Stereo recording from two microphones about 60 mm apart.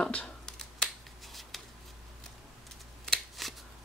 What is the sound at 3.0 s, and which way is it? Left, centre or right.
Shuffling cards, centre.